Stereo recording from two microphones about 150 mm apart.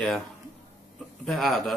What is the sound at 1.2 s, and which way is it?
Speech, centre (ahead or behind).